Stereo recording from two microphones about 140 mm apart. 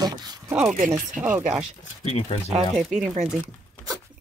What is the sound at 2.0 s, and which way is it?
Speech, 50° left (ahead or behind).